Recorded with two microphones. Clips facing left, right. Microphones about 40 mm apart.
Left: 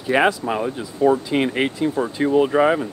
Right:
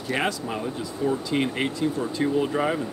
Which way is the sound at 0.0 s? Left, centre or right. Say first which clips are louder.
Left 8 dB; left.